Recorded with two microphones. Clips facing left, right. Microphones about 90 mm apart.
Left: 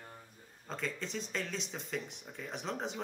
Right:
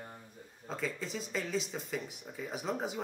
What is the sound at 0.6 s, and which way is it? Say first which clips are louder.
Speech: right 2 dB; 5° right (ahead or behind).